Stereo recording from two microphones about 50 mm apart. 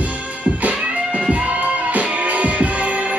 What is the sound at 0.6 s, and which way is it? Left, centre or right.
Music, right.